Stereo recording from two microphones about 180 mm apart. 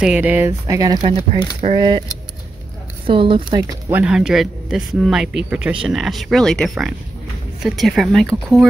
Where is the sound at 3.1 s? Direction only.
30° right (ahead or behind).